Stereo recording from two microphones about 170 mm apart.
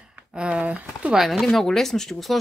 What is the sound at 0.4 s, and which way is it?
Speech, 5° right (ahead or behind).